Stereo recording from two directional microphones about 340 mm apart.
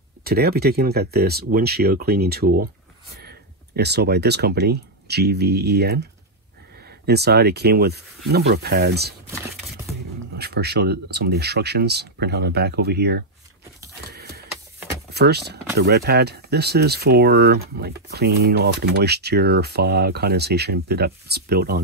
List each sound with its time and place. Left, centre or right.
0.2 s speech: right
10.3 s speech: right
14.1 s a sound: right
15.0 s speech: right